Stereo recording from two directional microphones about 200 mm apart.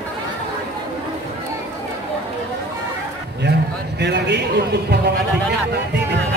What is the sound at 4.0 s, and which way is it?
A man's voice, 60° right (ahead or behind).